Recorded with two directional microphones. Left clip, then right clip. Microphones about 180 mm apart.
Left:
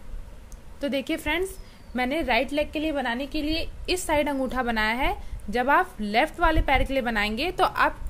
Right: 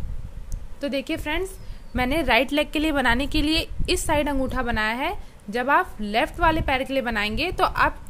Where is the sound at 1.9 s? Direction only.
15° right (ahead or behind); by 3.7 s 30° right (ahead or behind).